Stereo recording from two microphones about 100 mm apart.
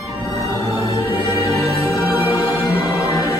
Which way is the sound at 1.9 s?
40° left (ahead or behind).